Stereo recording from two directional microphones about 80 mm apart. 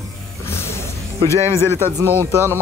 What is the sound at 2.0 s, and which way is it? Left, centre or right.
Speech, right.